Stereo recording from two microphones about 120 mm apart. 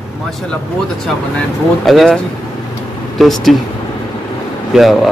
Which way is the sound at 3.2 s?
Centre (ahead or behind).